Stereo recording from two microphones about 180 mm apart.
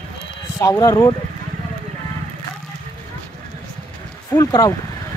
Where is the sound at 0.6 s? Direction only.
20° left (ahead or behind).